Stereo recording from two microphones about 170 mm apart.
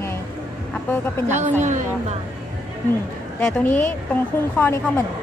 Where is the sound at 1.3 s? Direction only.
45° right (ahead or behind).